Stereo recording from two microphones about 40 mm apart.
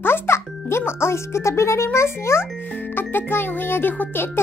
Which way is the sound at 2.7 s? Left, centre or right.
Left.